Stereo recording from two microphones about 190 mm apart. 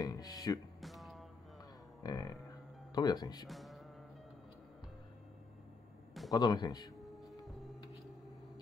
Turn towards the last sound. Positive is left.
turn(degrees=0)  # may be behind; listen again after turning